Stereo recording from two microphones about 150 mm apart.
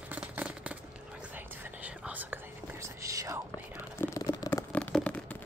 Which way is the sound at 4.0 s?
20° left (ahead or behind).